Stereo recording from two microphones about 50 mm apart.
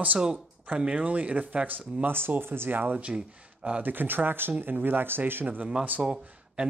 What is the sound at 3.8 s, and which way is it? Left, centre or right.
Speech, right.